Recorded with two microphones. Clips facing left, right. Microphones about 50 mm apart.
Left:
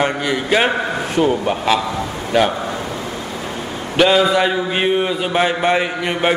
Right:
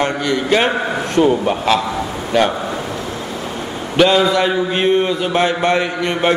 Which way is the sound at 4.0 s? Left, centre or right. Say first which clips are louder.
Right 1 dB; centre.